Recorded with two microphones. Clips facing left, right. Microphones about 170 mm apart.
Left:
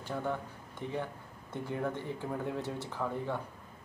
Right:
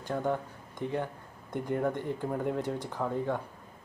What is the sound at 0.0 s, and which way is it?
Speech, 15° right (ahead or behind).